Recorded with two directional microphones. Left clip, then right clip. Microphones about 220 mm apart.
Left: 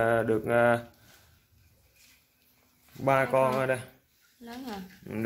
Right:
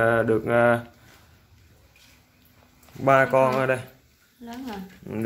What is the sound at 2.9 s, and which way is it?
Speech, centre (ahead or behind).